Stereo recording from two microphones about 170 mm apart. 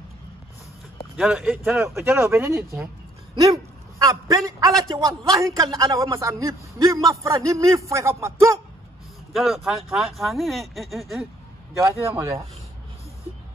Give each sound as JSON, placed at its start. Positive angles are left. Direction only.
{"t": 1.1, "sound": "a man's voice", "side_deg": -5}
{"t": 9.3, "sound": "speech", "side_deg": 0}
{"t": 11.8, "sound": "speech", "side_deg": -15}